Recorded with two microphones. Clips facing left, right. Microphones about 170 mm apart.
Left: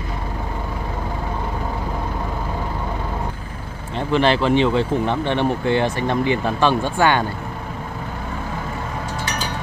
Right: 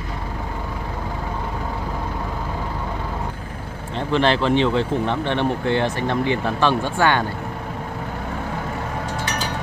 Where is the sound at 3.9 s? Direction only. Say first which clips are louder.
Left 1 dB; 10° left (ahead or behind).